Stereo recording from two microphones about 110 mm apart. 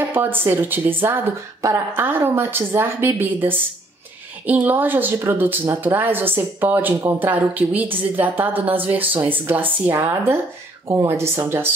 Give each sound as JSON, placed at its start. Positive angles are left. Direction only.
{"t": 0.1, "sound": "speech", "side_deg": -20}